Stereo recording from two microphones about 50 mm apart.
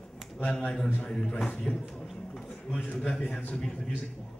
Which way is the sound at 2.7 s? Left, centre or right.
Left.